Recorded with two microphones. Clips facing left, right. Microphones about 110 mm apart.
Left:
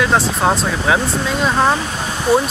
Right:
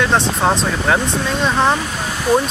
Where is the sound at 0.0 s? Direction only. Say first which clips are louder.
Even; centre (ahead or behind).